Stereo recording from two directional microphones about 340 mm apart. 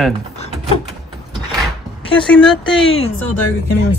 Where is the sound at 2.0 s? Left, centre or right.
Centre.